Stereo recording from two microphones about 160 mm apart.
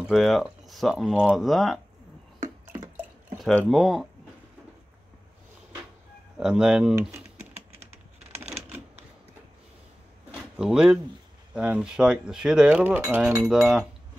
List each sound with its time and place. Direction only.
0.0 s speech: centre (ahead or behind)
2.4 s drip: 20° right (ahead or behind)
3.3 s speech: centre (ahead or behind)
6.3 s speech: 5° right (ahead or behind)
10.3 s a sound: 5° right (ahead or behind)
11.5 s speech: 5° right (ahead or behind)